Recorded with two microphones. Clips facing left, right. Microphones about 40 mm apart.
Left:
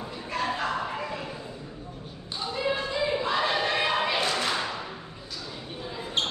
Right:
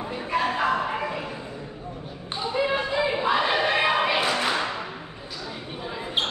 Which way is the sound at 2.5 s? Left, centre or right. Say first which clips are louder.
Right 4 dB; right.